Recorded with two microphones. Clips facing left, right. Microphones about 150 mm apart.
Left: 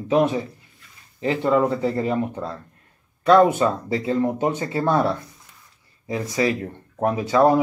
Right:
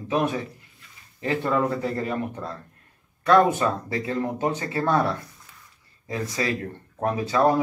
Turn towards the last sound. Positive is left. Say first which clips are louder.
# left 4 dB
turn(degrees=20)  # may be behind; listen again after turning